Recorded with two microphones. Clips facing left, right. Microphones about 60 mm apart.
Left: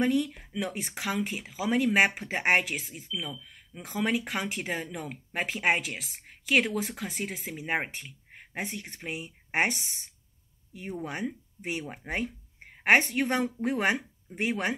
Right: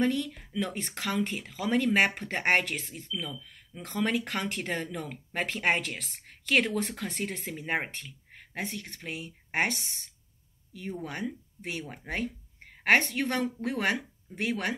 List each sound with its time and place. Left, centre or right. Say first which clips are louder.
0.0 s speech: left 2 dB; centre